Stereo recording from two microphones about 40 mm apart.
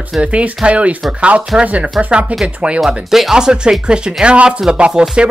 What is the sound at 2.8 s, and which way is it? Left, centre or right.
Speech, centre.